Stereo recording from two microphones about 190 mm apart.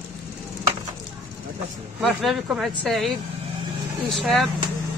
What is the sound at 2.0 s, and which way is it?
Speech, centre (ahead or behind).